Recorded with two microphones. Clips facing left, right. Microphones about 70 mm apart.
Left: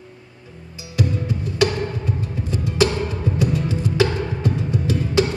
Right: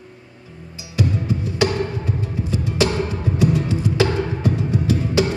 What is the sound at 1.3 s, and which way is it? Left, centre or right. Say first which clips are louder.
Music: even; right.